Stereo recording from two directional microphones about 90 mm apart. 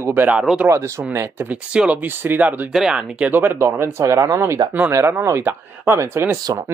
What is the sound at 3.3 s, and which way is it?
Speech, 20° right (ahead or behind).